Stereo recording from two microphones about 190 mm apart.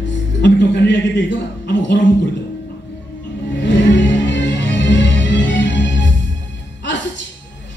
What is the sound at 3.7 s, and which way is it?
Music, 70° left (ahead or behind).